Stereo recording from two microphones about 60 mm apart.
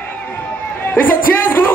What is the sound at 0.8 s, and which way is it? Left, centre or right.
Speech, left.